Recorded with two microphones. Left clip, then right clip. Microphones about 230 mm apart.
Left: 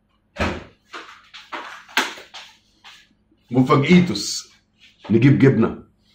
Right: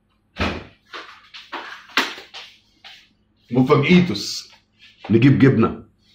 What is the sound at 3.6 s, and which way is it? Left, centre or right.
Speech, centre.